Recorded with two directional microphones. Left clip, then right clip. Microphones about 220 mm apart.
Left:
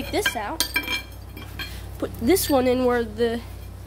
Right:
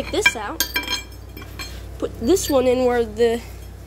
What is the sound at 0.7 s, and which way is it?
Chink, 20° right (ahead or behind).